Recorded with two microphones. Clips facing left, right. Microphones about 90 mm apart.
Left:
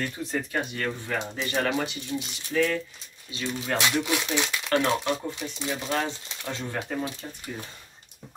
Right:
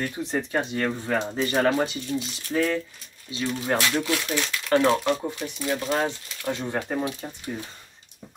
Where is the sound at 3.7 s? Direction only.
20° left (ahead or behind).